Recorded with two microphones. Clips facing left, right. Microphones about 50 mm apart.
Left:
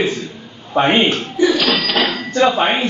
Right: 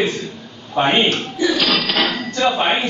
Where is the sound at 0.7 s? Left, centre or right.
Centre.